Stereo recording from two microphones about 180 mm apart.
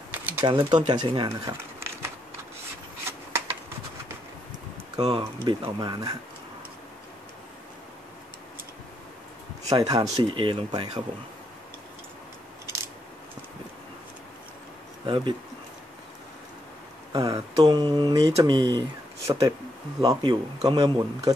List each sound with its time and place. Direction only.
0.1 s pigeon: 10° right (ahead or behind)
0.5 s speech: 25° right (ahead or behind)
1.6 s a sound: 15° right (ahead or behind)
4.9 s speech: 20° right (ahead or behind)
9.7 s speech: 20° right (ahead or behind)
15.0 s speech: 25° right (ahead or behind)
17.1 s speech: 20° right (ahead or behind)